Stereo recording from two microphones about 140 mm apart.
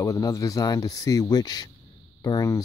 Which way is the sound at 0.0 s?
25° left (ahead or behind).